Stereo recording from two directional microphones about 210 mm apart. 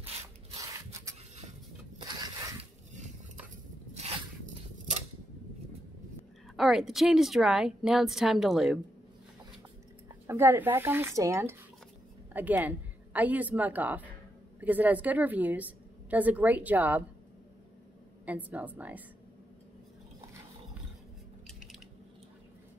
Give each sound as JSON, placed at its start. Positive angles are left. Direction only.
{"t": 0.0, "sound": "rub", "side_deg": -30}
{"t": 2.0, "sound": "zipper", "side_deg": -20}
{"t": 3.9, "sound": "a sound", "side_deg": -30}
{"t": 6.5, "sound": "a woman's voice", "side_deg": 0}
{"t": 10.0, "sound": "a woman's voice", "side_deg": -10}
{"t": 18.2, "sound": "a woman's voice", "side_deg": -5}
{"t": 21.5, "sound": "a sound", "side_deg": 0}